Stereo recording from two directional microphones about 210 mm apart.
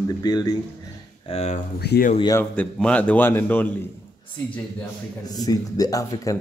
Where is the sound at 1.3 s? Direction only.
30° left (ahead or behind).